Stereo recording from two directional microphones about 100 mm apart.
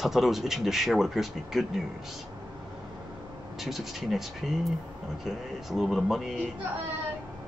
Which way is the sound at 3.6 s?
Centre (ahead or behind).